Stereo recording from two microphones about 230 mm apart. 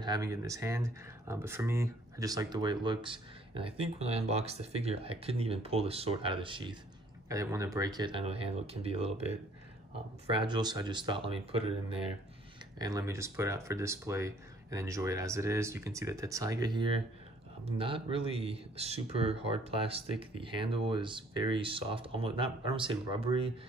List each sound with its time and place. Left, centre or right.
0.0 s speech: centre
10.3 s speech: centre